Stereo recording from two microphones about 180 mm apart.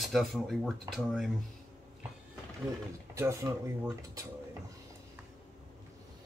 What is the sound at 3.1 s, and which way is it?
Speech, 15° right (ahead or behind).